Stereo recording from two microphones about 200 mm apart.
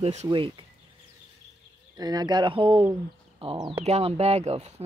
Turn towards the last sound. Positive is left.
turn(degrees=-35)  # may be behind; listen again after turning